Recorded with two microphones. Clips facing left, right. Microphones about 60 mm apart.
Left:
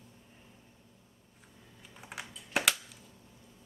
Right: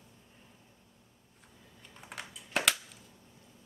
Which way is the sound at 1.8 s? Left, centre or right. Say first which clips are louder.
Left 1 dB; centre.